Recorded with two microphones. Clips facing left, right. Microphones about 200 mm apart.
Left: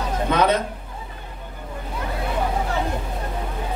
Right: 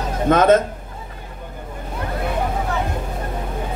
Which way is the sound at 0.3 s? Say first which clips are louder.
Right 6 dB; 45° right (ahead or behind).